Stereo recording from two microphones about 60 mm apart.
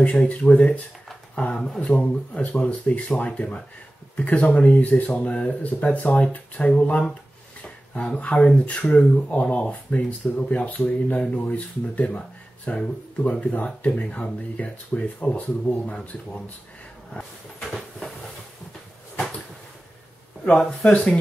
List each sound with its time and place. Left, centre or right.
0.0 s speech: left
6.7 s speech: centre
7.6 s a sound: centre
8.2 s speech: left
17.7 s a sound: centre
20.4 s speech: centre